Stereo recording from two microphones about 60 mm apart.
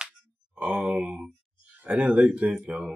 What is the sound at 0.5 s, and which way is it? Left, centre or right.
Speech, right.